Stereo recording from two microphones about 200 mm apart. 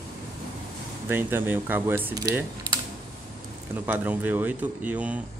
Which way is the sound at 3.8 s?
10° right (ahead or behind).